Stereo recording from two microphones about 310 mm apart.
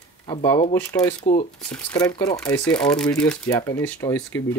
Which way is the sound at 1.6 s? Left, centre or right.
Centre.